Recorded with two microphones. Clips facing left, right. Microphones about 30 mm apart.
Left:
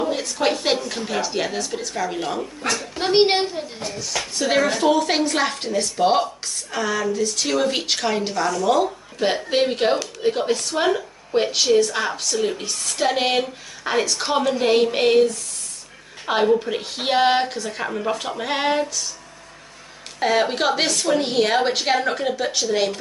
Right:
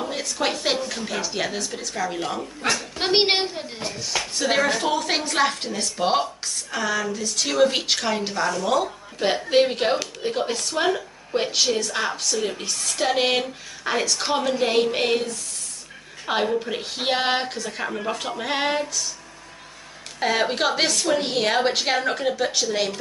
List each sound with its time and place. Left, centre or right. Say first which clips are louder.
0.0 s a woman's voice: left 4 dB; centre
3.0 s speech: left 4 dB; right
4.2 s speech: left 2 dB; centre
16.3 s speech: left 4 dB; centre
20.2 s speech: left 2 dB; centre